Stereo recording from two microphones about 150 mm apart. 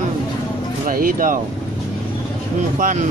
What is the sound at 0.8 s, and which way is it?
Speech, 70° right (ahead or behind).